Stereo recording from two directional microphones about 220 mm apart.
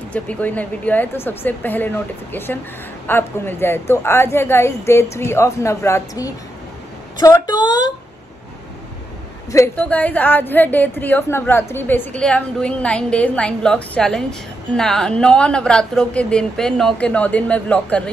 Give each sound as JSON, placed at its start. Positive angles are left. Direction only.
{"t": 0.1, "sound": "a woman's voice", "side_deg": 5}
{"t": 9.5, "sound": "a woman's voice", "side_deg": 10}